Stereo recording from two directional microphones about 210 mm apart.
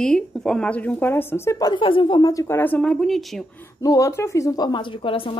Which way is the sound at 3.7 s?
15° left (ahead or behind).